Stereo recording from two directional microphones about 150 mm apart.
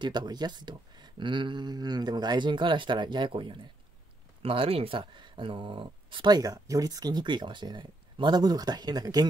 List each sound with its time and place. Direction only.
0.0 s speech: 30° right (ahead or behind)